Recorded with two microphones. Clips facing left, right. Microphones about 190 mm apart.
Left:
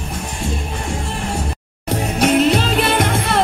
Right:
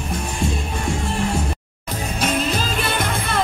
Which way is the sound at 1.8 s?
70° left (ahead or behind).